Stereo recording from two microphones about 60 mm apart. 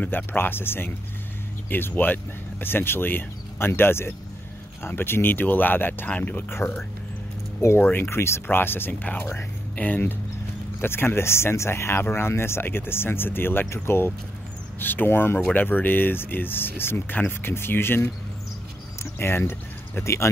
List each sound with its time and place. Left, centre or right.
0.0 s speech: left
9.8 s speech: left
10.8 s speech: left
14.8 s speech: left
19.1 s speech: left
20.0 s speech: left